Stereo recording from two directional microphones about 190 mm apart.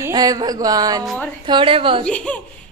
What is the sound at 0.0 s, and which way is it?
Speech, 20° right (ahead or behind).